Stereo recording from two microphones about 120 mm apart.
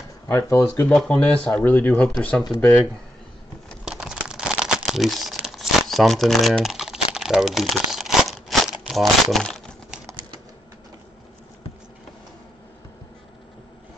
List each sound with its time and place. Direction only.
0.3 s speech: 25° left (ahead or behind)
0.8 s speech: 5° left (ahead or behind)
3.6 s crumpling: centre (ahead or behind)